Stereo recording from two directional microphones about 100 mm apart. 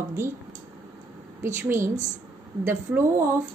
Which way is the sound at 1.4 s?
25° right (ahead or behind).